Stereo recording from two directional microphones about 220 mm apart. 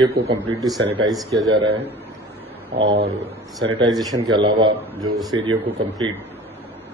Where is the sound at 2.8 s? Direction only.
55° right (ahead or behind).